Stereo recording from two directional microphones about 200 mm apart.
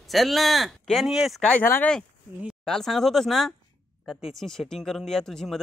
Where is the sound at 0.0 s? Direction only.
Centre (ahead or behind).